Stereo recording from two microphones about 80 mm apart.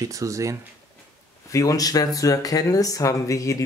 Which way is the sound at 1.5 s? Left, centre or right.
Left.